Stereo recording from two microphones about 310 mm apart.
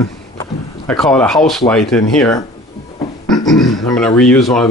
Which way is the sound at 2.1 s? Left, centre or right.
Centre.